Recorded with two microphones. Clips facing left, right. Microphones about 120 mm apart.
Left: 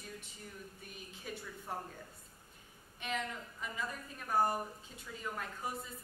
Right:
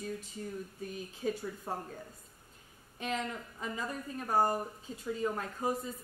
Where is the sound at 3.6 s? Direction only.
35° right (ahead or behind).